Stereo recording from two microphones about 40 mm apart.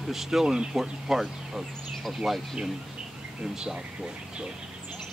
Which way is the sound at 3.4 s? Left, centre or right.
Right.